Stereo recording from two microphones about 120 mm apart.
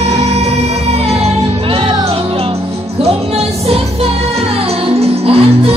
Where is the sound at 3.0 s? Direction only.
60° right (ahead or behind).